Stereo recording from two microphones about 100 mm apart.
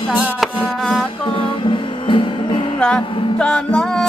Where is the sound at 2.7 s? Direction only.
10° left (ahead or behind).